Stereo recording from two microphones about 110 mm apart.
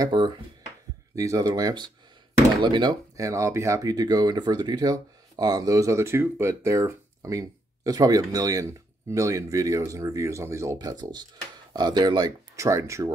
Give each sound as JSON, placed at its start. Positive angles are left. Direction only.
{"t": 0.1, "sound": "speech", "side_deg": -45}
{"t": 1.1, "sound": "speech", "side_deg": -30}
{"t": 3.2, "sound": "speech", "side_deg": -30}